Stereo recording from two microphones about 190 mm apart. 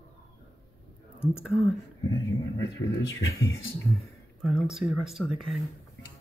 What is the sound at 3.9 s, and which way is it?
Speech, centre (ahead or behind).